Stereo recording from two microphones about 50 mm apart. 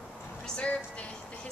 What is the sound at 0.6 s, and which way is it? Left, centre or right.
Speech, left.